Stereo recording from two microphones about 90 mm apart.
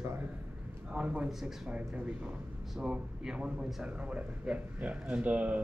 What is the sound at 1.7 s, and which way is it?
A man's voice, 15° right (ahead or behind).